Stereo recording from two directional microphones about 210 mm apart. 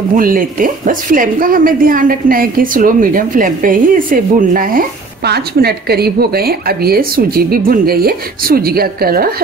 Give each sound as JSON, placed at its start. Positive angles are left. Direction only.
{"t": 0.1, "sound": "a woman's voice", "side_deg": -40}